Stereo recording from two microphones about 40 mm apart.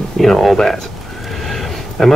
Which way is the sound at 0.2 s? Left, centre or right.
Centre.